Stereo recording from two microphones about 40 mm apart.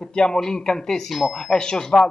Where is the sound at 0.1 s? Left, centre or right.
Centre.